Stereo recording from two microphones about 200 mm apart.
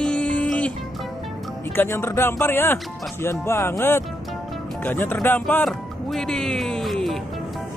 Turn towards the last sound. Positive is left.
turn(degrees=0)  # may be behind; listen again after turning